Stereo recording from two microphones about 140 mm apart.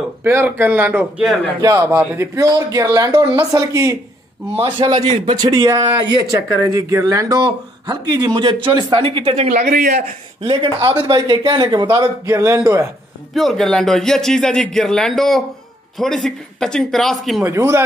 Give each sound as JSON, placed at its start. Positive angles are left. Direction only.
{"t": 0.2, "sound": "a man's voice", "side_deg": -15}
{"t": 1.6, "sound": "a man's voice", "side_deg": -20}
{"t": 4.6, "sound": "a man's voice", "side_deg": -35}
{"t": 9.7, "sound": "a man's voice", "side_deg": -65}
{"t": 10.5, "sound": "a man's voice", "side_deg": -35}
{"t": 13.3, "sound": "a man's voice", "side_deg": 0}
{"t": 17.4, "sound": "a man's voice", "side_deg": -20}